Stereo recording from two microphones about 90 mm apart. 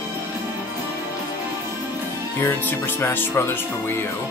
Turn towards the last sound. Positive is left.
turn(degrees=25)  # may be behind; listen again after turning